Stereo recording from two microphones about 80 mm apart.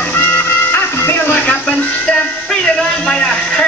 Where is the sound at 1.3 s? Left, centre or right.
Centre.